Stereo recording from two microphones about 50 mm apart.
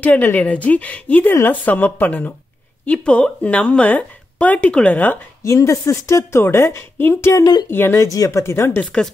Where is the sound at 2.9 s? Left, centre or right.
Left.